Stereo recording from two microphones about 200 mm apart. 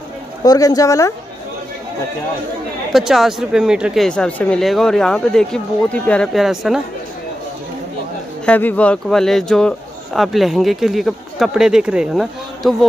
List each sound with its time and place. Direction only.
0.4 s speech: 20° left (ahead or behind)
2.9 s a man's voice: centre (ahead or behind)
8.5 s a man's voice: 10° left (ahead or behind)